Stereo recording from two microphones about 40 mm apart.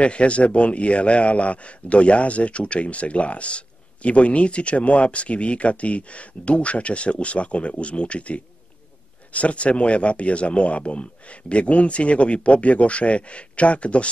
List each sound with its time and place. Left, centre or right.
0.0 s a man's voice: left